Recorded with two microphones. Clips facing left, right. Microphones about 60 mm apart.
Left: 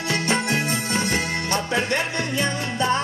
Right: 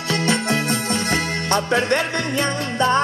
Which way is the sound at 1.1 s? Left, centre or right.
Right.